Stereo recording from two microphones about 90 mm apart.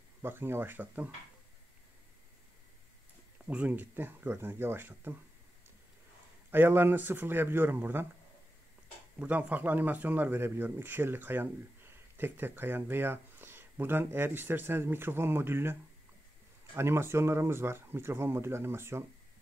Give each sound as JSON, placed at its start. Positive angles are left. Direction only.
{"t": 0.2, "sound": "speech", "side_deg": -25}
{"t": 3.4, "sound": "speech", "side_deg": -15}
{"t": 6.5, "sound": "speech", "side_deg": -25}
{"t": 9.2, "sound": "speech", "side_deg": -15}